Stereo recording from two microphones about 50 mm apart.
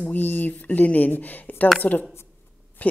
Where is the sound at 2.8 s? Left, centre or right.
Left.